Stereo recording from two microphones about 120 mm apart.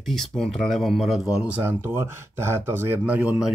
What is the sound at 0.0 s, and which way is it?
Speech, 5° left (ahead or behind).